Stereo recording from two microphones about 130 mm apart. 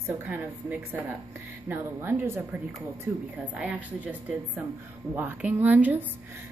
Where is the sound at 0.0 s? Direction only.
15° right (ahead or behind).